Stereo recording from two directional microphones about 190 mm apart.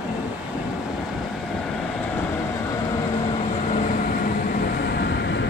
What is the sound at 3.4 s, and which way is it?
Vehicle, 40° left (ahead or behind).